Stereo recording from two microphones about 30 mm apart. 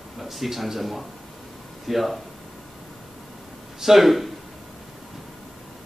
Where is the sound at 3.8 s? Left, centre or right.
Centre.